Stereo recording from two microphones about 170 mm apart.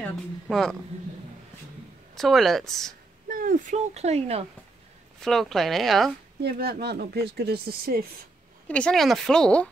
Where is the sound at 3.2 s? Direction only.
55° right (ahead or behind); by 4.5 s 35° right (ahead or behind).